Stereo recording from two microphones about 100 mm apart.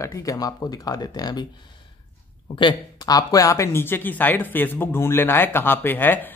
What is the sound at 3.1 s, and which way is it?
Speech, 40° left (ahead or behind).